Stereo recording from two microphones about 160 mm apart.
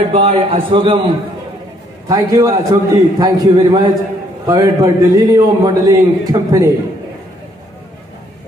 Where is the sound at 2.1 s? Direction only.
20° right (ahead or behind).